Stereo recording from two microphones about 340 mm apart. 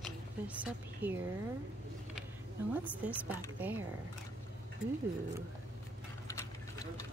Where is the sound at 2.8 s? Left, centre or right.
Centre.